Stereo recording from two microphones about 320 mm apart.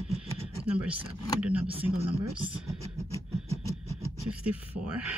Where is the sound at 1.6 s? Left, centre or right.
Centre.